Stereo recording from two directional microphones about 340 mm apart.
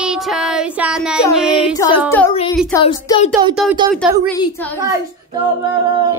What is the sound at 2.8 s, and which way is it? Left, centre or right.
Speech, centre.